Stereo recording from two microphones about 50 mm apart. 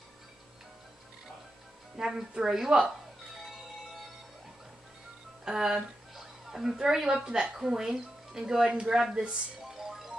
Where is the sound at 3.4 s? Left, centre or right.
Centre.